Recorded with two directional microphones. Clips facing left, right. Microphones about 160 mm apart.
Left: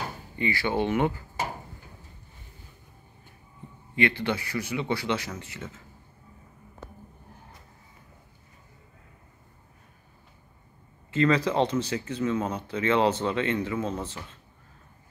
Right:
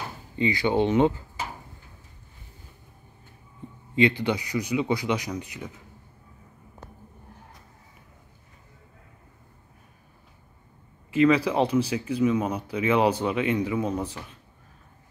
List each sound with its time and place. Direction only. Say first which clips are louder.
0.4 s speech: right 4 dB; 20° right (ahead or behind)
3.9 s speech: right 4 dB; 20° right (ahead or behind)
11.1 s speech: right 3 dB; 10° right (ahead or behind)